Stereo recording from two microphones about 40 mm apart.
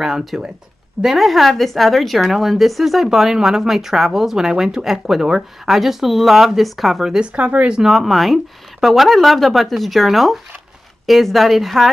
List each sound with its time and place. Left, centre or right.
0.0 s a woman's voice: centre
7.3 s speech: right
7.8 s speech: centre